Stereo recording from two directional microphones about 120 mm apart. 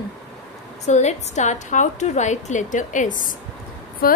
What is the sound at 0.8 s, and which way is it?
A woman's voice, 70° left (ahead or behind).